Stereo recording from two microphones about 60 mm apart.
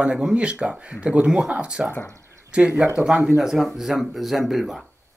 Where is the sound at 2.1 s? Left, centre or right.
Right.